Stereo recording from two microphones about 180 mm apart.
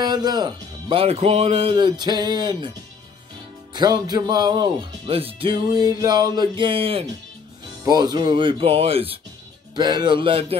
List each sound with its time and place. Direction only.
0.0 s speech: 20° right (ahead or behind)
3.7 s speech: 20° right (ahead or behind)